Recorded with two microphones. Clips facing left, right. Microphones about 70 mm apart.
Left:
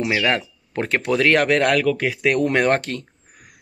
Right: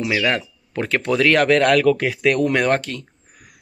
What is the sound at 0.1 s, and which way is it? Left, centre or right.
Speech, left.